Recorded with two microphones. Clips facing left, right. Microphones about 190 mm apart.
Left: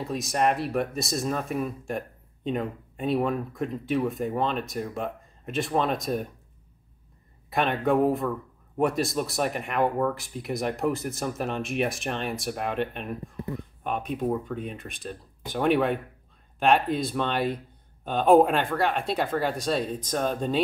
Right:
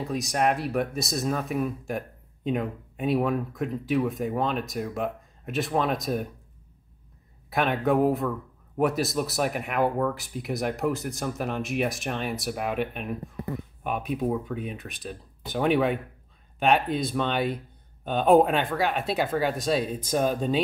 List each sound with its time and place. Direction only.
0.0 s speech: centre (ahead or behind)
7.4 s speech: centre (ahead or behind)